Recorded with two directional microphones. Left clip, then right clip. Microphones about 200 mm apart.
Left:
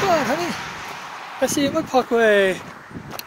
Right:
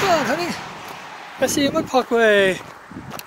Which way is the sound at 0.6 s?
20° left (ahead or behind).